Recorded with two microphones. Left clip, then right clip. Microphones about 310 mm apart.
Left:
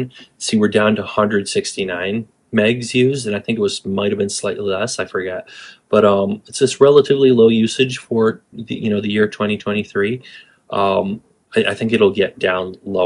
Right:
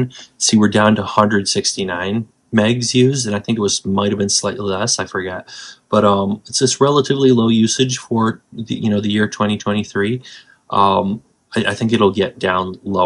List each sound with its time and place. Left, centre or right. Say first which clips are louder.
0.0 s speech: right 6 dB; right